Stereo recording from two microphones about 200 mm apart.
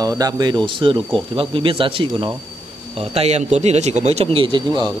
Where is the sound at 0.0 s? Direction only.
20° right (ahead or behind).